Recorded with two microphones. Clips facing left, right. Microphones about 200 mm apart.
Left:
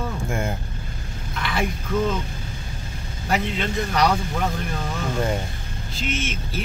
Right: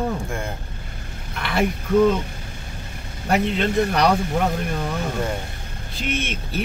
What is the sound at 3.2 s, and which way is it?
Speech, 55° right (ahead or behind).